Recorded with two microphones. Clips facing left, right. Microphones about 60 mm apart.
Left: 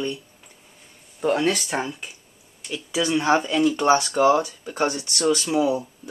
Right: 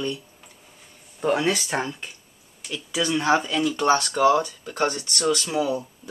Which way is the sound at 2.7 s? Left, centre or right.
Centre.